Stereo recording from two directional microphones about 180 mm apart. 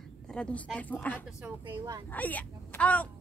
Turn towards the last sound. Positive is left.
turn(degrees=10)  # may be behind; listen again after turning